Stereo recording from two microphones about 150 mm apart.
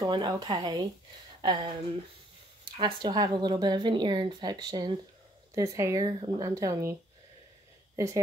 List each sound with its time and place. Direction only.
0.0 s speech: 30° right (ahead or behind)
2.8 s speech: 30° right (ahead or behind)